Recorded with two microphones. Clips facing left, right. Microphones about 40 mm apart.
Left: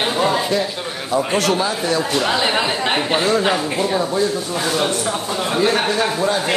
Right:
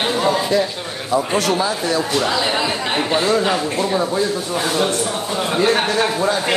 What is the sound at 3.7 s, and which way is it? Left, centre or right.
Speech, centre.